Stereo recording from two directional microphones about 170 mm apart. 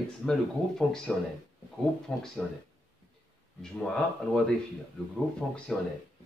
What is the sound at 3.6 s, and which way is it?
Speech, 5° left (ahead or behind).